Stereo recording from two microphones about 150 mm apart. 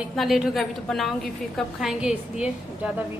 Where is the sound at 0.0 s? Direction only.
Centre (ahead or behind).